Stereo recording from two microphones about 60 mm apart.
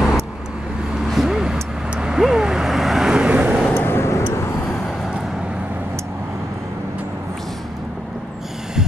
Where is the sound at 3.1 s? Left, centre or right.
Centre.